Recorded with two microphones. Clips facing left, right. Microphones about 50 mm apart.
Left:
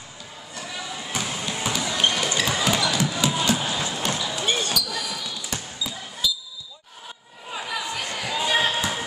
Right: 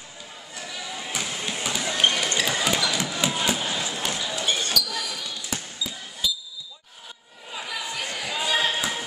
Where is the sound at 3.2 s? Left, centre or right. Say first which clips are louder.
Left 1 dB; centre.